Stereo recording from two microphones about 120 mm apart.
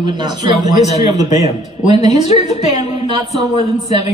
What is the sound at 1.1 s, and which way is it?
A man's voice, 70° left (ahead or behind).